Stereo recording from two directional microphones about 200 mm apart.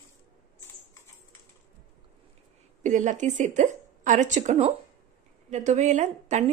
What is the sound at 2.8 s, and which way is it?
A woman's voice, 40° right (ahead or behind).